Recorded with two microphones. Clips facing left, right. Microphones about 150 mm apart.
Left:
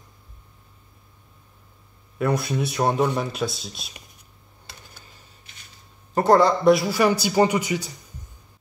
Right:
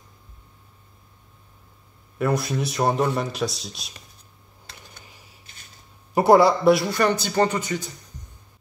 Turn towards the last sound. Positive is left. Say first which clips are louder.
# left 2 dB
turn(degrees=10)  # may be behind; listen again after turning